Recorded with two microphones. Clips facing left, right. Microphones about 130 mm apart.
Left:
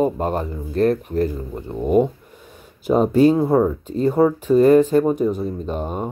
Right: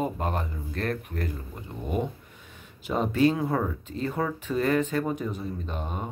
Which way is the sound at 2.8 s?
40° left (ahead or behind).